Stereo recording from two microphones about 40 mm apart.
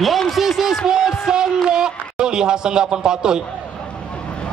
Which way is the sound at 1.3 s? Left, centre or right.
Centre.